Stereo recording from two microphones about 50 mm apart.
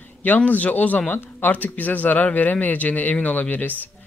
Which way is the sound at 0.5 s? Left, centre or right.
Left.